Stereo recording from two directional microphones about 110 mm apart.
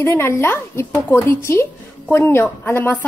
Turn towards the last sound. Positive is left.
turn(degrees=20)  # may be behind; listen again after turning